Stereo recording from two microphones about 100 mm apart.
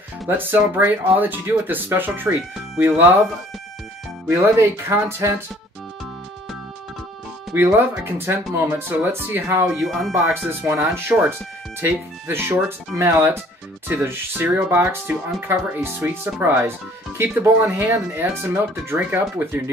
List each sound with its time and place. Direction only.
0.3 s speech: 20° right (ahead or behind)
4.3 s speech: 25° right (ahead or behind)
7.5 s speech: 20° right (ahead or behind)
9.8 s speech: centre (ahead or behind)
10.1 s speech: 25° right (ahead or behind)